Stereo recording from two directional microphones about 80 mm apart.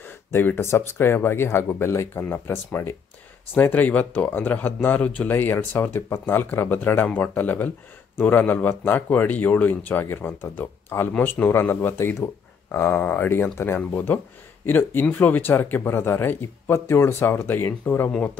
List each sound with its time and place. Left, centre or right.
0.0 s speech: left
13.0 s speech: left